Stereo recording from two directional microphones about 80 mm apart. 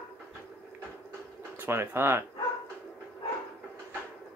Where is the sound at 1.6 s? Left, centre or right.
Right.